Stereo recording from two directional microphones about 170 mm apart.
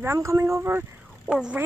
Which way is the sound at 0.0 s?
15° right (ahead or behind).